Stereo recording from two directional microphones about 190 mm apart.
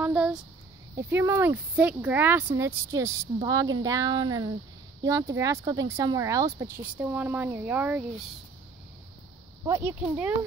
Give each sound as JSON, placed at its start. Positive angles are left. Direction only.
{"t": 0.0, "sound": "a sound", "side_deg": -5}
{"t": 0.9, "sound": "speech", "side_deg": -15}
{"t": 9.6, "sound": "speech", "side_deg": -15}